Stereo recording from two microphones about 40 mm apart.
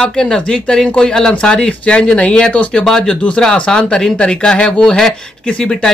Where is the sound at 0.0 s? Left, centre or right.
Left.